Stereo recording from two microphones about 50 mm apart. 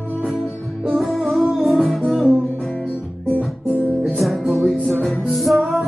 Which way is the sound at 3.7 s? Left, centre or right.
Right.